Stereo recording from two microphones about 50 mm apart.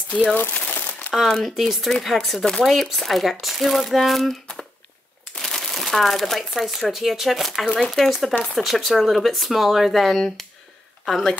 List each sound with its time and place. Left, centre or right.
0.3 s speech: left
0.6 s crumpling: left
1.3 s speech: centre
5.4 s speech: centre